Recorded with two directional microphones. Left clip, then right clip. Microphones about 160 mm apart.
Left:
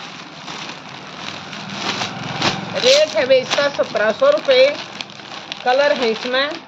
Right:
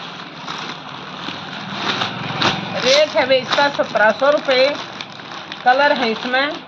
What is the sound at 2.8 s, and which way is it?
A man's voice, 25° left (ahead or behind).